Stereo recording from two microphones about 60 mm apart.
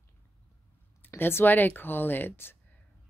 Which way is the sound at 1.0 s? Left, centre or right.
Left.